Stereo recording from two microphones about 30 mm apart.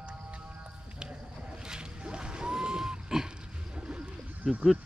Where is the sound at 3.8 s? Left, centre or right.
Right.